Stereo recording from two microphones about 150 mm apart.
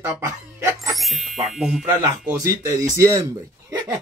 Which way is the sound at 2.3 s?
20° right (ahead or behind).